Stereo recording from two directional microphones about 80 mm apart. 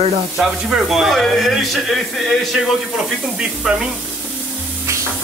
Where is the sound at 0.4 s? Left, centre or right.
Centre.